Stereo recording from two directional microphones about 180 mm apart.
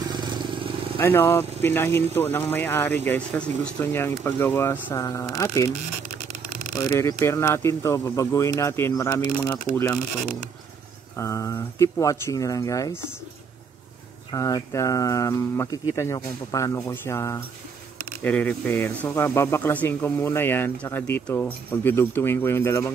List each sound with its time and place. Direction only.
0.1 s vehicle: 25° right (ahead or behind)
0.9 s speech: 15° left (ahead or behind)
6.7 s speech: 15° left (ahead or behind)
11.1 s speech: 15° left (ahead or behind)
14.3 s speech: 20° left (ahead or behind)